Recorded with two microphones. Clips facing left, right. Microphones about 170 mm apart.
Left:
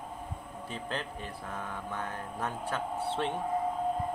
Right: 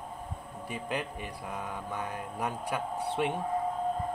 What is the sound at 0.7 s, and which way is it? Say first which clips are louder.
Speech: right 3 dB; 15° right (ahead or behind).